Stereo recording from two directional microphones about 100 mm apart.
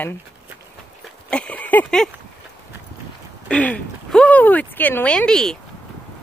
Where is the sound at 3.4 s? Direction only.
15° left (ahead or behind).